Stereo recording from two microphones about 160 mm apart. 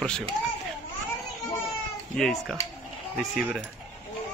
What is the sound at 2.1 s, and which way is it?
Speech, centre (ahead or behind).